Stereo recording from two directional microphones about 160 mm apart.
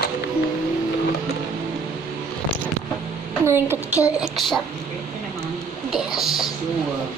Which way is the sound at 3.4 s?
15° right (ahead or behind).